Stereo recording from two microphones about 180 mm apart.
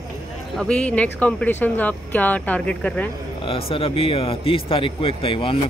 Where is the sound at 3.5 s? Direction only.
30° left (ahead or behind).